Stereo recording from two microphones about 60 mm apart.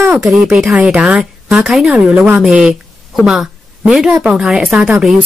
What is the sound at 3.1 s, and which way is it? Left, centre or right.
A woman's voice, centre.